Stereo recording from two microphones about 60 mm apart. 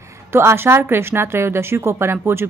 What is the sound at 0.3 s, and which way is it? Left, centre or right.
A woman's voice, right.